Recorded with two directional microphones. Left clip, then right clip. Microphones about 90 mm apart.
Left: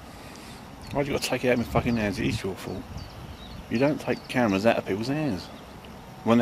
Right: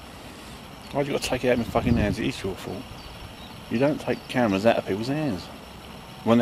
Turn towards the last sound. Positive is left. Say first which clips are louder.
# right 1 dB
turn(degrees=-5)  # may be behind; listen again after turning